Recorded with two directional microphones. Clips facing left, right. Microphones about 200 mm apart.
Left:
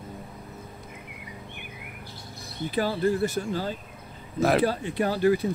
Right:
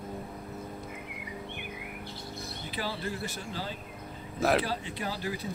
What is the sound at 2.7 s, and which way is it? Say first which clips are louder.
Speech: left 11 dB; 50° left (ahead or behind).